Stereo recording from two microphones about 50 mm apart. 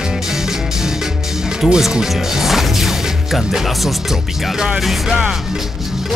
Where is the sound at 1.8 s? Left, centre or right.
Centre.